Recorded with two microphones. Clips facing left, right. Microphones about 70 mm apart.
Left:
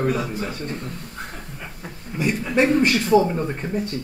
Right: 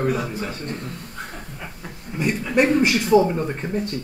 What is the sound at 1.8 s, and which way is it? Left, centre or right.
Speech, centre.